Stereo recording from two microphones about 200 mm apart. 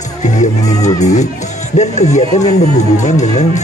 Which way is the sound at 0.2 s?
40° left (ahead or behind).